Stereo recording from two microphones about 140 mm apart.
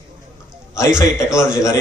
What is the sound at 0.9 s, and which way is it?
Speech, 5° right (ahead or behind).